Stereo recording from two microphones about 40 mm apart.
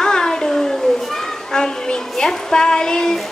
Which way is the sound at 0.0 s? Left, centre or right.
Centre.